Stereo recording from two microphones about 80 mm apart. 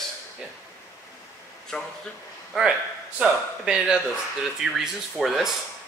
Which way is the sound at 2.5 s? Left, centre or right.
Centre.